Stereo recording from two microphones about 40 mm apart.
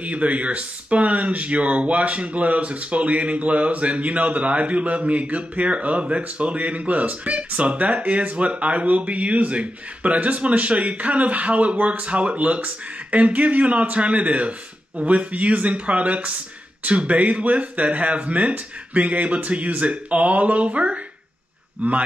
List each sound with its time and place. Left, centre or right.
0.0 s speech: right